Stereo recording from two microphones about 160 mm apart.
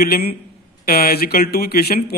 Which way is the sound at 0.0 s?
75° left (ahead or behind).